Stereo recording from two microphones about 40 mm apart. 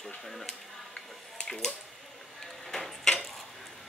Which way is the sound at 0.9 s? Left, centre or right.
Left.